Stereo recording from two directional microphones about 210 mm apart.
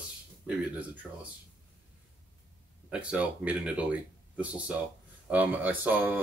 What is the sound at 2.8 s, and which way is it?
Speech, 5° right (ahead or behind).